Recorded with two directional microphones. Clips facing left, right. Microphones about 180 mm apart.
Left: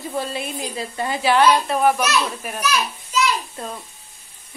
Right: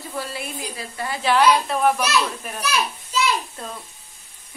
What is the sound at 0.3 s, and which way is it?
Speech, 25° left (ahead or behind).